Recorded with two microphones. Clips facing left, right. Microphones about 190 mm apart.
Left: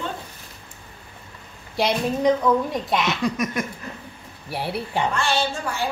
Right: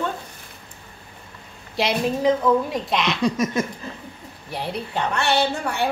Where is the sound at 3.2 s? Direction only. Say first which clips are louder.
Right 3 dB; 25° right (ahead or behind).